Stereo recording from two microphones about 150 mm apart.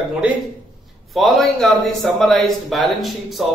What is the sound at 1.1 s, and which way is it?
A man's voice, centre (ahead or behind).